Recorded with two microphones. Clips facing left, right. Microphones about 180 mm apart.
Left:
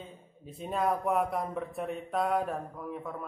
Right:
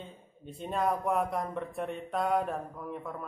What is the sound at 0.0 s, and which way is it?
A man's voice, centre (ahead or behind).